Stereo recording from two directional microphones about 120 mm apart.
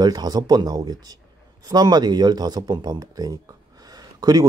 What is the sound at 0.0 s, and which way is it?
A man's voice, 35° right (ahead or behind).